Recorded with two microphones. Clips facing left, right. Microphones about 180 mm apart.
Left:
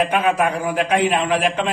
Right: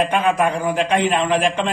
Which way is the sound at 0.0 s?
10° left (ahead or behind).